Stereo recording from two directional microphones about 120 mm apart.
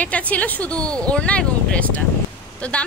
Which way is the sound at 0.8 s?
30° right (ahead or behind).